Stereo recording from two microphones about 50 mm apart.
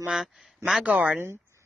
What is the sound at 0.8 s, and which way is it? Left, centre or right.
Speech, right.